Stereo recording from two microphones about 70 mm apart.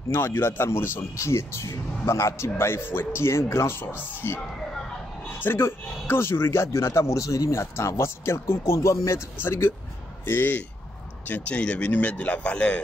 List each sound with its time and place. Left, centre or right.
0.1 s a man's voice: left
1.1 s a man's voice: left
5.4 s a man's voice: left
7.7 s a man's voice: left
9.4 s a man's voice: left
11.2 s speech: left